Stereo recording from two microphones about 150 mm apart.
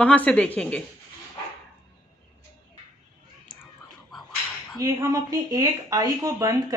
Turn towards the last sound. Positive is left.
turn(degrees=-20)  # may be behind; listen again after turning